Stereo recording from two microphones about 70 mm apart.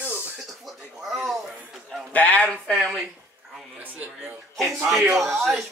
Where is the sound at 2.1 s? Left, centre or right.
Left.